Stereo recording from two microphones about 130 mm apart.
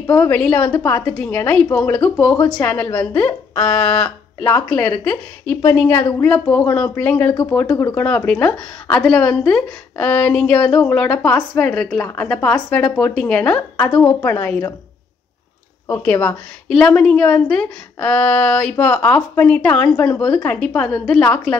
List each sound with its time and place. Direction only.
0.0 s a woman's voice: 20° left (ahead or behind); by 14.0 s 5° left (ahead or behind)
14.0 s a woman's voice: 15° left (ahead or behind)
15.9 s a woman's voice: 10° left (ahead or behind)